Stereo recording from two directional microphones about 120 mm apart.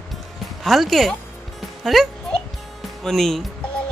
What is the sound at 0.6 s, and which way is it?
Music, centre (ahead or behind).